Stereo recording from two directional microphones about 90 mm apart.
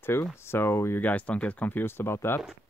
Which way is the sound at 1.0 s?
15° left (ahead or behind).